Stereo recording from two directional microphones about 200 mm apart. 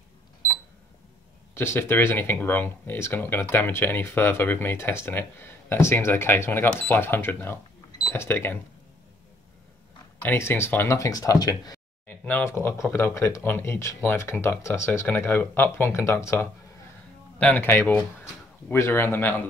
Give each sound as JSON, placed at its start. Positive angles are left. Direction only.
{"t": 1.5, "sound": "speech", "side_deg": 10}
{"t": 10.2, "sound": "speech", "side_deg": 10}